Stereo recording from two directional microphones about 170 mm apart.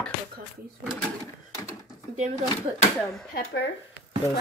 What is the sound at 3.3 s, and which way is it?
Speech, 70° left (ahead or behind).